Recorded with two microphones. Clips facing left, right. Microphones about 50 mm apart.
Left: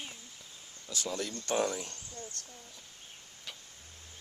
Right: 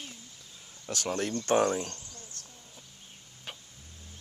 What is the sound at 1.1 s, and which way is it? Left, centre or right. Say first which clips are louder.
Speech: right 6 dB; right.